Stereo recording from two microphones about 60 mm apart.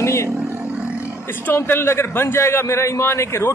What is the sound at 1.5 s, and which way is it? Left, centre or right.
A man's voice, left.